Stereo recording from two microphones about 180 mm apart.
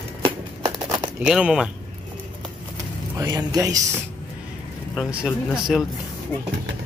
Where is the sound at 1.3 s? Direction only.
5° right (ahead or behind).